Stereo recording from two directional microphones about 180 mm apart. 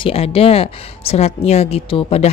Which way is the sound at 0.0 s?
30° left (ahead or behind).